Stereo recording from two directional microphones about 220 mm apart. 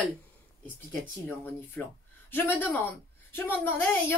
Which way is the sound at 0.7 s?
10° left (ahead or behind).